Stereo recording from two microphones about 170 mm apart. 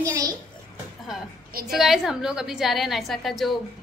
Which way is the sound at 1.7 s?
Centre (ahead or behind).